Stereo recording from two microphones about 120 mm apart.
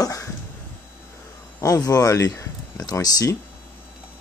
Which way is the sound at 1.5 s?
25° left (ahead or behind).